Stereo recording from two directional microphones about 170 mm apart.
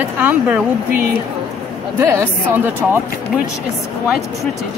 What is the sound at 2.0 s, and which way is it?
Speech, 15° right (ahead or behind).